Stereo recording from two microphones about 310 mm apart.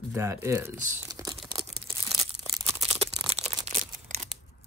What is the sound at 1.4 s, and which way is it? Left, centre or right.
Tearing, centre.